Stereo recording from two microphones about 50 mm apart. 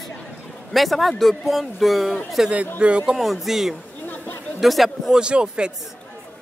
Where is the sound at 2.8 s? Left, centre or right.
Right.